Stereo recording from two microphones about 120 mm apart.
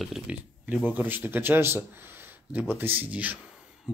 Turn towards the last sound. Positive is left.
turn(degrees=-15)  # may be behind; listen again after turning